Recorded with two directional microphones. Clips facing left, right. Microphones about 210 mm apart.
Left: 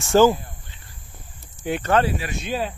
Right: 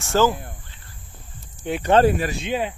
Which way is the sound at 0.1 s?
15° left (ahead or behind).